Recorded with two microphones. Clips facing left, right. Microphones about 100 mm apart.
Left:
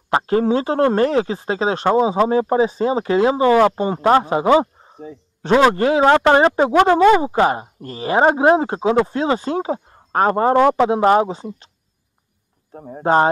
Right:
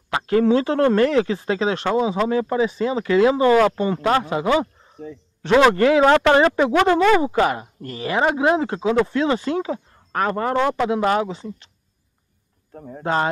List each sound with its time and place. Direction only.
0.1 s speech: 30° left (ahead or behind)
12.7 s speech: 30° left (ahead or behind)